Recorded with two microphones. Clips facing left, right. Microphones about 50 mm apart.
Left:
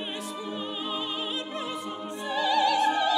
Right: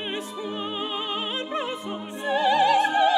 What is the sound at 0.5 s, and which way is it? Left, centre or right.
Opera, right.